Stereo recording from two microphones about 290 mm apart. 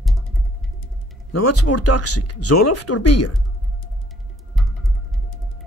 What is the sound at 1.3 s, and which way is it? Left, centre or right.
Speech, left.